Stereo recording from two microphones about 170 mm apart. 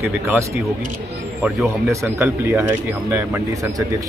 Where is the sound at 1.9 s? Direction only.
15° right (ahead or behind).